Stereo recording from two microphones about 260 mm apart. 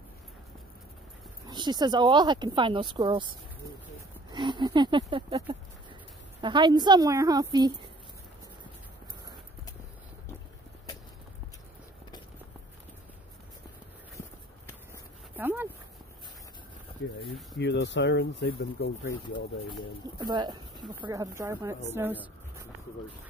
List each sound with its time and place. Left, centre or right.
1.5 s speech: centre
15.3 s a sound: centre
17.0 s speech: left
20.2 s speech: centre